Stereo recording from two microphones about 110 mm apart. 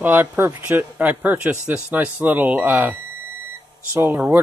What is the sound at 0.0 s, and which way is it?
A man's voice, 15° right (ahead or behind).